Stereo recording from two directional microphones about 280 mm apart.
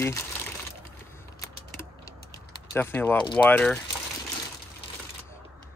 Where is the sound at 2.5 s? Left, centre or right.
Centre.